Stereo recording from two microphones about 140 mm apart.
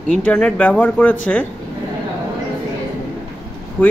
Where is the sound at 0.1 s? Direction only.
10° left (ahead or behind).